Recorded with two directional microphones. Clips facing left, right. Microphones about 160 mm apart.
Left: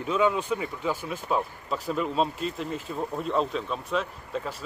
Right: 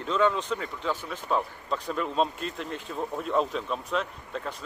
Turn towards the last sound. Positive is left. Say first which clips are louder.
# left 2 dB
turn(degrees=5)  # may be behind; listen again after turning